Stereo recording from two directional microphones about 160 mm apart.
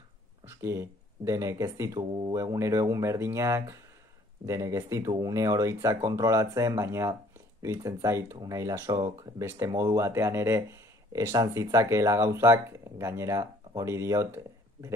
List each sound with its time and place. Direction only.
0.6 s speech: 15° right (ahead or behind)